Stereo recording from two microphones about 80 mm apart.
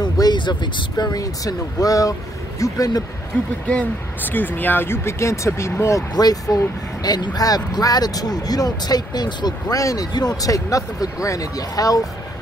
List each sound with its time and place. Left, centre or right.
0.0 s speech: left
3.6 s speech: centre; by 6.0 s left
6.1 s speech: left